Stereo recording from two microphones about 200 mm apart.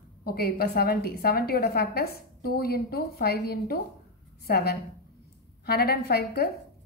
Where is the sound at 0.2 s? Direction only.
50° left (ahead or behind).